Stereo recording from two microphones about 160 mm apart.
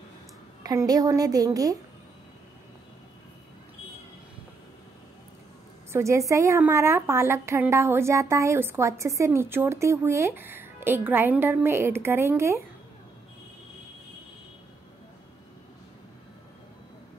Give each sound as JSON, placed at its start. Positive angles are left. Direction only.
{"t": 0.7, "sound": "a woman's voice", "side_deg": -25}
{"t": 5.9, "sound": "a woman's voice", "side_deg": -15}